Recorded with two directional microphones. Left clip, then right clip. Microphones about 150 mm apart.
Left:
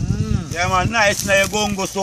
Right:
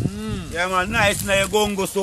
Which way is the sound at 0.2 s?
Centre (ahead or behind).